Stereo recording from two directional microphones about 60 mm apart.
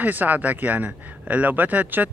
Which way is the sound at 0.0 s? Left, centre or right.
Right.